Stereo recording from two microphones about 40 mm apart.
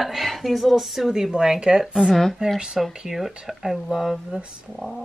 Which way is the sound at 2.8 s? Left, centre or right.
Centre.